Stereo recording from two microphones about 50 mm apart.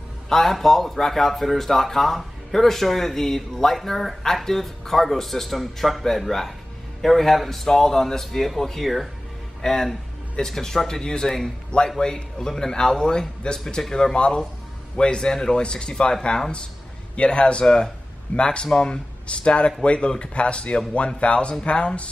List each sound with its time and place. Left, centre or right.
0.3 s speech: centre; by 22.1 s left